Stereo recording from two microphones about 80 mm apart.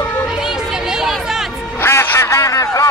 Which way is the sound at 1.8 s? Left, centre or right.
Left.